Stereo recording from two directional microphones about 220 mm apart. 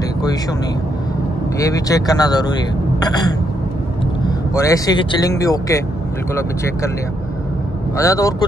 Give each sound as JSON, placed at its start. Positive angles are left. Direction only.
{"t": 1.6, "sound": "speech", "side_deg": 15}
{"t": 4.6, "sound": "speech", "side_deg": 15}
{"t": 8.0, "sound": "speech", "side_deg": 15}